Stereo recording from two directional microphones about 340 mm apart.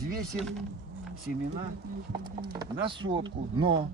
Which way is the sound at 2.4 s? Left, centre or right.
Centre.